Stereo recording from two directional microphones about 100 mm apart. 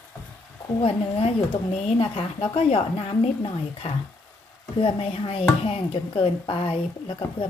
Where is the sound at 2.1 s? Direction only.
70° left (ahead or behind); by 3.9 s 90° left.